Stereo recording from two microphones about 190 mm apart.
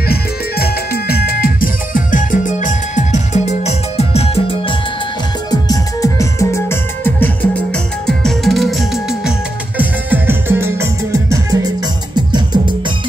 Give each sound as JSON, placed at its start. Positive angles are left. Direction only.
{"t": 0.1, "sound": "music", "side_deg": 55}
{"t": 5.5, "sound": "music", "side_deg": 20}